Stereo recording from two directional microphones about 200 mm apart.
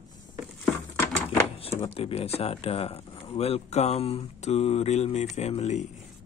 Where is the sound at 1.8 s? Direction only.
30° left (ahead or behind).